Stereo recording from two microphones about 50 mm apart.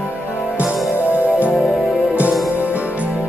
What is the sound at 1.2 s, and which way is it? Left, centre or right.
Music, right.